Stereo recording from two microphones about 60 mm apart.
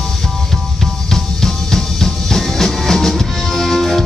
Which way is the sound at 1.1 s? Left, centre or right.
Centre.